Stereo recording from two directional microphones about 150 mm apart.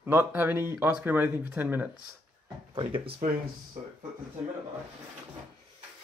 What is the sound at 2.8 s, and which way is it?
Speech, 35° right (ahead or behind).